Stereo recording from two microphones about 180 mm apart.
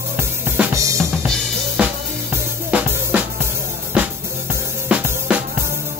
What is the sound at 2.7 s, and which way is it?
Music, 10° right (ahead or behind).